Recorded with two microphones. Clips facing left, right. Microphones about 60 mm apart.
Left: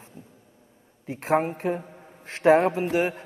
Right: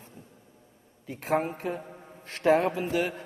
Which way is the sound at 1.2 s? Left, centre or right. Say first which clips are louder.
Left 4 dB; left.